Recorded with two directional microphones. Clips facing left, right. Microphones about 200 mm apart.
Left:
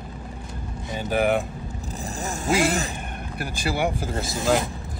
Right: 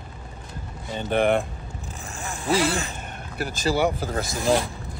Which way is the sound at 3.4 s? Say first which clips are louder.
Right 3 dB; 15° left (ahead or behind).